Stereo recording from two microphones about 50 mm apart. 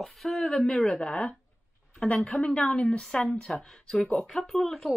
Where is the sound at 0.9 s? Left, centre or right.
Left.